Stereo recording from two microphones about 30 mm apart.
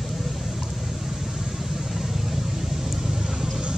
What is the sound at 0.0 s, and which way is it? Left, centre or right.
Vehicle, centre.